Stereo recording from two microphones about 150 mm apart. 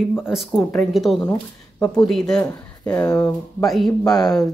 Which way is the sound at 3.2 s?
Centre (ahead or behind).